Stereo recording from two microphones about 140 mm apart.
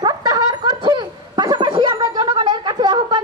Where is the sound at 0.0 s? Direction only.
30° right (ahead or behind).